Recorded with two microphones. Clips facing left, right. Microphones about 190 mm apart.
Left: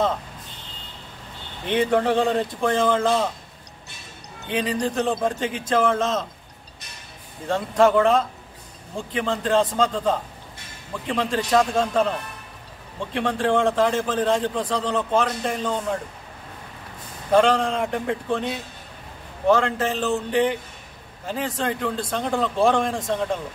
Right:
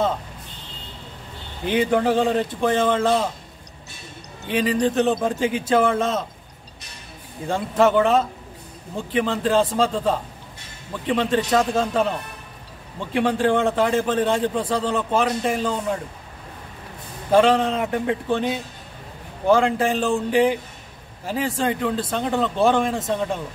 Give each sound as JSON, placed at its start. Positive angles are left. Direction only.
{"t": 1.7, "sound": "speech", "side_deg": -5}
{"t": 4.5, "sound": "a man's voice", "side_deg": -5}
{"t": 7.4, "sound": "a man's voice", "side_deg": -5}
{"t": 13.1, "sound": "a man's voice", "side_deg": -5}
{"t": 17.3, "sound": "speech", "side_deg": -5}
{"t": 19.5, "sound": "a man's voice", "side_deg": -10}